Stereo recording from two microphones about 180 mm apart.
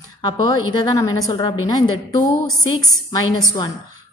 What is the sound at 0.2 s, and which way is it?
A woman's voice, 25° left (ahead or behind).